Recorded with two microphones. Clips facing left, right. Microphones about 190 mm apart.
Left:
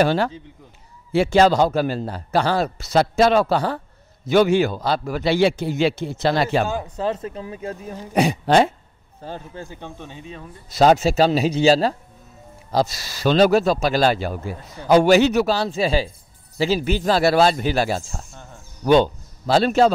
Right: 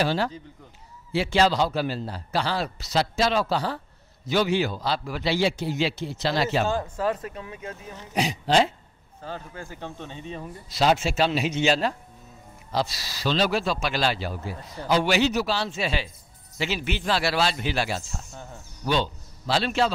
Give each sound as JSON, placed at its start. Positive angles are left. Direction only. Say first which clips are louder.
{"t": 0.0, "sound": "speech", "louder": "left 6 dB", "side_deg": 55}
{"t": 7.0, "sound": "speech", "louder": "left 2 dB", "side_deg": 25}
{"t": 8.1, "sound": "speech", "louder": "left 6 dB", "side_deg": 55}
{"t": 9.2, "sound": "speech", "louder": "left 3 dB", "side_deg": 30}
{"t": 9.7, "sound": "speech", "louder": "left 1 dB", "side_deg": 15}
{"t": 10.7, "sound": "speech", "louder": "left 7 dB", "side_deg": 45}
{"t": 12.7, "sound": "speech", "louder": "left 6 dB", "side_deg": 45}
{"t": 15.5, "sound": "a man's voice", "louder": "left 7 dB", "side_deg": 40}